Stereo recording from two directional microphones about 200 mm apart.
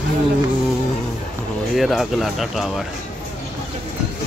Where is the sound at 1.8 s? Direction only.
Centre (ahead or behind).